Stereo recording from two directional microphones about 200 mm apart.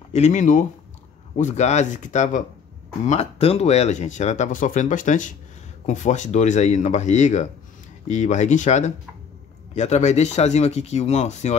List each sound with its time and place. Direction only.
0.1 s speech: 35° left (ahead or behind)